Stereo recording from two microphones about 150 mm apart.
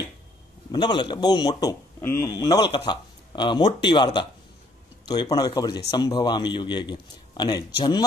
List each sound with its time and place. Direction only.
0.7 s a man's voice: 30° left (ahead or behind)